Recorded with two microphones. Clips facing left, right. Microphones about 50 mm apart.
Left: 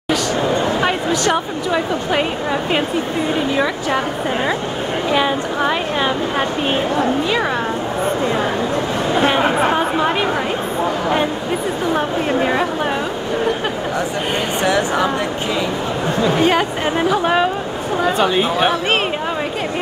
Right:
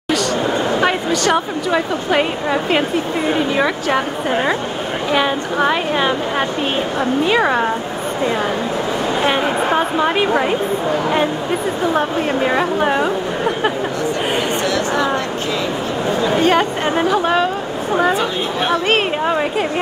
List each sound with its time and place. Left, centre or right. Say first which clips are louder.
0.7 s a sound: right 1 dB; centre
1.7 s a woman's voice: right 1 dB; centre
9.3 s a woman's voice: left 1 dB; centre
12.4 s speech: right 2 dB; centre
14.6 s speech: left 1 dB; centre
16.4 s speech: right 1 dB; centre
18.7 s speech: right 2 dB; centre